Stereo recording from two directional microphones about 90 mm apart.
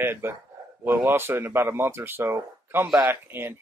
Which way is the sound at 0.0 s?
25° right (ahead or behind).